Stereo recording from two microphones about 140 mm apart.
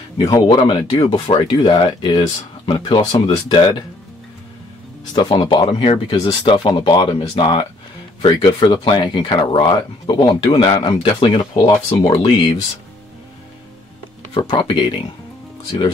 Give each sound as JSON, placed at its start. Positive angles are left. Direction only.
{"t": 0.2, "sound": "speech", "side_deg": 30}
{"t": 5.1, "sound": "speech", "side_deg": 30}
{"t": 14.3, "sound": "speech", "side_deg": 35}